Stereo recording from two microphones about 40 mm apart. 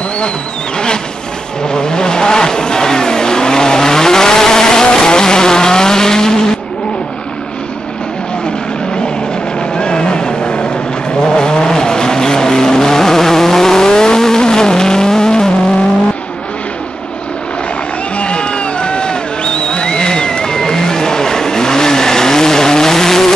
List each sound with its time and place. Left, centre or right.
1.7 s vehicle: centre
9.8 s vehicle: left
18.1 s a sound: left; by 23.3 s centre